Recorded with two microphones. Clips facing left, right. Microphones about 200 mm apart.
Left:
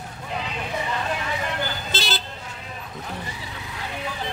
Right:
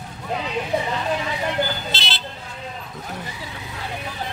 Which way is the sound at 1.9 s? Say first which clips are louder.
Left 2 dB; 45° left (ahead or behind).